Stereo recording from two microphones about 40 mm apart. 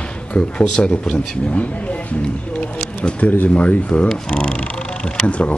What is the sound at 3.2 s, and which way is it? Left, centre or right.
Speech, left.